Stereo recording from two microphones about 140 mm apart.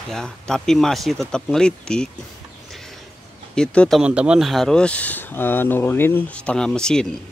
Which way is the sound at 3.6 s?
5° left (ahead or behind).